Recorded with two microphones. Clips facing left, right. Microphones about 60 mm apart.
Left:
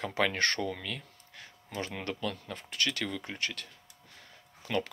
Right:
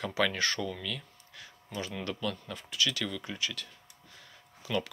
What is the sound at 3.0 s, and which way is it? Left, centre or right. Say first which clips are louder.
Speech: even; left.